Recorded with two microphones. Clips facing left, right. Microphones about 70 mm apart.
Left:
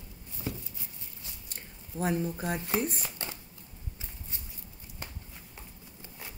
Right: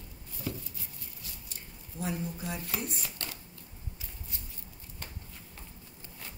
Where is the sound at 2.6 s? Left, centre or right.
Left.